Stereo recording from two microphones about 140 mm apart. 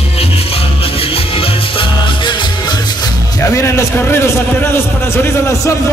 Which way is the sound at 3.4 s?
20° left (ahead or behind).